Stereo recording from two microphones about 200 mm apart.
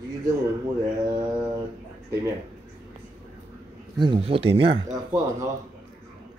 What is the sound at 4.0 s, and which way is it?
Speech, 25° right (ahead or behind).